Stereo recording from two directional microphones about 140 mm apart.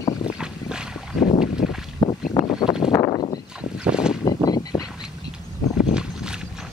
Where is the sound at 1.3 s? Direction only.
5° right (ahead or behind).